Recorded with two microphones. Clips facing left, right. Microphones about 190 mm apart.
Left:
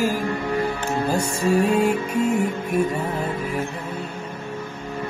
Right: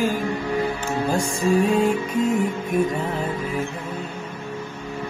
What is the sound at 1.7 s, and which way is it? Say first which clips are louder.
Music: even; 10° left (ahead or behind).